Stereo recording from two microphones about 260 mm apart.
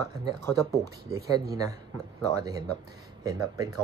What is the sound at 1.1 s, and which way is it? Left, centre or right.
Speech, centre.